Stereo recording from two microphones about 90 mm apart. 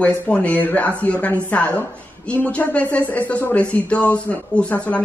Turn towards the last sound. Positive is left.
turn(degrees=15)  # may be behind; listen again after turning